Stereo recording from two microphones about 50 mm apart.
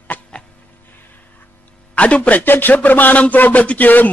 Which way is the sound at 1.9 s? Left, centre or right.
Left.